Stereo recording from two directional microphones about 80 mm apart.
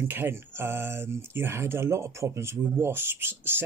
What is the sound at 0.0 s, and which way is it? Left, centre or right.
Speech, right.